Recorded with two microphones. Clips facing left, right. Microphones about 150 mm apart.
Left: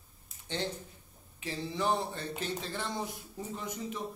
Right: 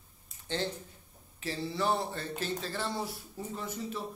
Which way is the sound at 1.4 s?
15° left (ahead or behind).